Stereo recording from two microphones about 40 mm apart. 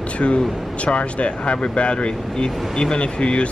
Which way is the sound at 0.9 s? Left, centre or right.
Left.